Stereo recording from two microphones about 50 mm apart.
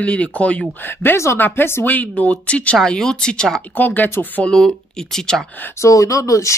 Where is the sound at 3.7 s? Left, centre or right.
Left.